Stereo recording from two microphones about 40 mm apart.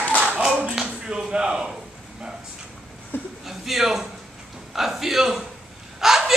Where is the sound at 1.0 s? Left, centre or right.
Right.